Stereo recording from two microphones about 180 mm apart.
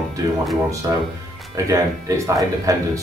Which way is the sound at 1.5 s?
15° right (ahead or behind).